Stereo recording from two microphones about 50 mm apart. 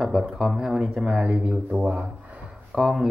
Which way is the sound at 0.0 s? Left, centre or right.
Centre.